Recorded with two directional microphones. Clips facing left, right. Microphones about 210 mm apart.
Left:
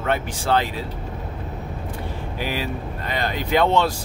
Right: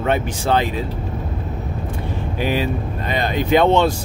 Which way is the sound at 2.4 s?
20° right (ahead or behind).